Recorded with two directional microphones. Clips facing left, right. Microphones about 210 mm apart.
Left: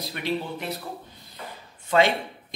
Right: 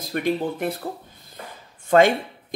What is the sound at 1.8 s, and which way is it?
Speech, 50° right (ahead or behind).